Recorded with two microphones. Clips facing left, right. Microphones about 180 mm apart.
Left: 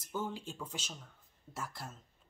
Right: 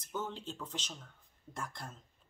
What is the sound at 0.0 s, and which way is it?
A man's voice, 10° left (ahead or behind).